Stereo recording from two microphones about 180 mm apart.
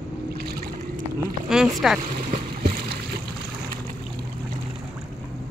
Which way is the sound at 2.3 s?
60° right (ahead or behind).